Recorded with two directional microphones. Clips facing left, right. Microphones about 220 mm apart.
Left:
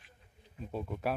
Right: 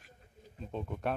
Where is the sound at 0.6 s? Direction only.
5° left (ahead or behind).